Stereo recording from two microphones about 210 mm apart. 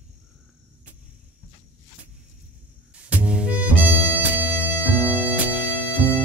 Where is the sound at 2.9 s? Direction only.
5° right (ahead or behind).